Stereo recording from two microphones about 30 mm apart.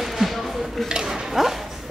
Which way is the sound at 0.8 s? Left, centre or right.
Right.